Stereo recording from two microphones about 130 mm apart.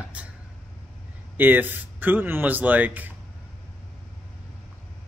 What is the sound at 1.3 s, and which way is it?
Speech, 15° right (ahead or behind).